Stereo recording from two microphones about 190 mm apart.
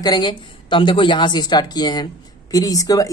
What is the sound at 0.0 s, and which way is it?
Speech, 25° left (ahead or behind).